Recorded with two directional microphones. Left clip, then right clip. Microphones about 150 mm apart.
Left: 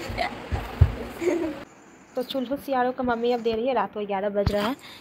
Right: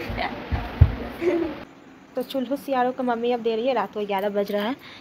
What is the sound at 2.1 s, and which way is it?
Speech, 5° left (ahead or behind).